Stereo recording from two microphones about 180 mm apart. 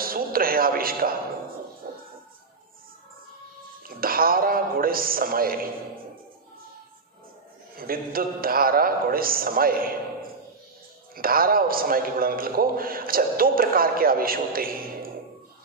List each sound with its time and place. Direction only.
0.0 s a man's voice: 55° right (ahead or behind)
1.8 s music: 55° right (ahead or behind)
3.8 s a man's voice: 55° right (ahead or behind)
7.7 s a man's voice: 55° right (ahead or behind)
11.1 s a man's voice: 55° right (ahead or behind)